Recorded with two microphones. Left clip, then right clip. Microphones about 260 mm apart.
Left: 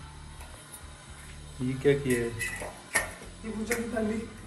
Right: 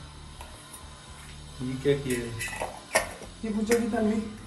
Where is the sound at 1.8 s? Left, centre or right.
Centre.